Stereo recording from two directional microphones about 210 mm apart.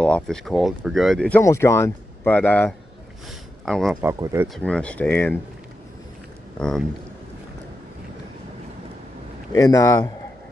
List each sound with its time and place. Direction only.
0.0 s speech: 5° left (ahead or behind)
4.0 s speech: 15° right (ahead or behind)
4.6 s speech: 5° left (ahead or behind)
9.5 s speech: 15° left (ahead or behind)